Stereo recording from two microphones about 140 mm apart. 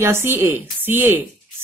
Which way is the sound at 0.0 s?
15° right (ahead or behind).